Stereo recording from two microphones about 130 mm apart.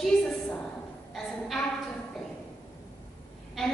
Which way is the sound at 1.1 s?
Centre (ahead or behind).